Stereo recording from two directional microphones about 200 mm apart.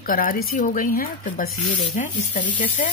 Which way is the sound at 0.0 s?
45° left (ahead or behind).